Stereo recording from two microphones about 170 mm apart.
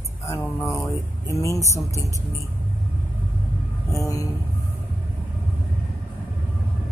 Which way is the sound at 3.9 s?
20° left (ahead or behind).